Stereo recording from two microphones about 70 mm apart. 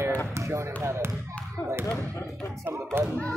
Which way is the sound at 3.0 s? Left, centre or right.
Right.